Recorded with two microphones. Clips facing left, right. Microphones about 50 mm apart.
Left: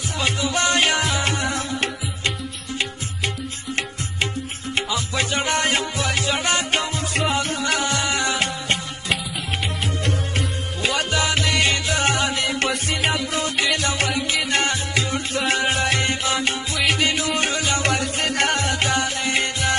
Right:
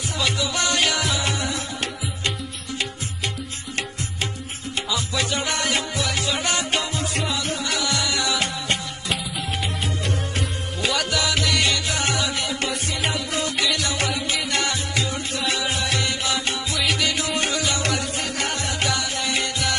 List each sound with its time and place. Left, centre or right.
0.2 s music: left
4.8 s music: left
10.8 s music: left
13.3 s music: left